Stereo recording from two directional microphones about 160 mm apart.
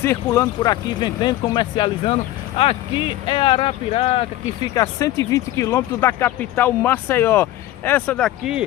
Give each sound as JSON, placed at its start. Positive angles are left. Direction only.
{"t": 0.0, "sound": "speech", "side_deg": 15}
{"t": 0.6, "sound": "speech", "side_deg": 30}
{"t": 4.7, "sound": "speech", "side_deg": 20}